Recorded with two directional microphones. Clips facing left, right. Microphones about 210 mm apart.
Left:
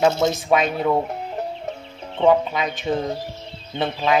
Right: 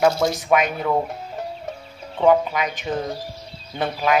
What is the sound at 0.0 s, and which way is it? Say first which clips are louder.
Speech: even; 25° left (ahead or behind).